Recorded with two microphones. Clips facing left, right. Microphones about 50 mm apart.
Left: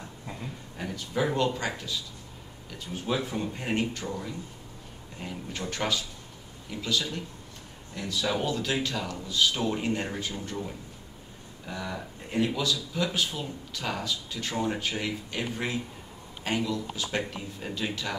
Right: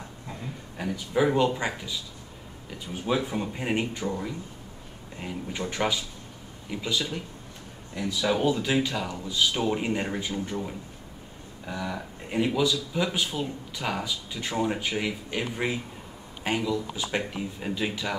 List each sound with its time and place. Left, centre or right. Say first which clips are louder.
0.7 s speech: right 5 dB; centre